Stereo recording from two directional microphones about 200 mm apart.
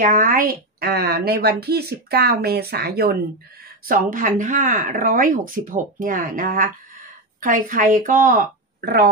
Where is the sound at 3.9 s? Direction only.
40° right (ahead or behind).